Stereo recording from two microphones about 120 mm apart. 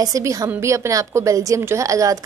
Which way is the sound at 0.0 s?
30° right (ahead or behind).